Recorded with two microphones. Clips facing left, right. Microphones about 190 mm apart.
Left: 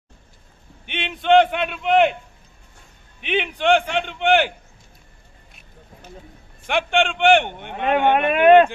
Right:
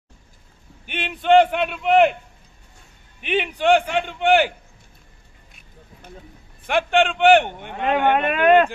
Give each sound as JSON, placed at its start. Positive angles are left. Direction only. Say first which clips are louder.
{"t": 0.8, "sound": "speech", "louder": "even", "side_deg": -5}
{"t": 3.2, "sound": "a man's voice", "louder": "right 1 dB", "side_deg": -5}
{"t": 6.7, "sound": "speech", "louder": "right 2 dB", "side_deg": -5}
{"t": 8.1, "sound": "speech", "louder": "left 4 dB", "side_deg": 20}